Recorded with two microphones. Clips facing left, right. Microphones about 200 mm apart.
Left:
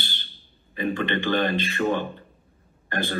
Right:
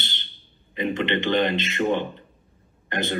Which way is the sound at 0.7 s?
20° right (ahead or behind).